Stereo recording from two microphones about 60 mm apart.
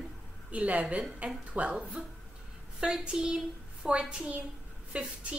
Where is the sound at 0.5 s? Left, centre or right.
Right.